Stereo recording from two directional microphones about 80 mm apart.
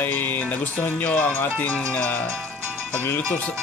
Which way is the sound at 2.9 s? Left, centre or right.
Left.